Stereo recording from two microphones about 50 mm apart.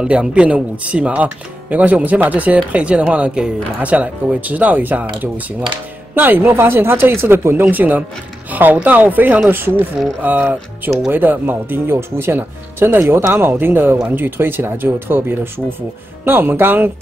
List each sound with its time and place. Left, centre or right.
0.0 s speech: centre; by 7.6 s right
7.7 s speech: right